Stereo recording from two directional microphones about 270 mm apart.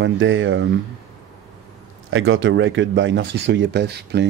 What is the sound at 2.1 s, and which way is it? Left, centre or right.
Speech, right.